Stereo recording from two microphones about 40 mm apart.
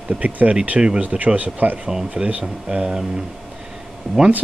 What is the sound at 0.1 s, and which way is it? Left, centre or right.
Speech, right.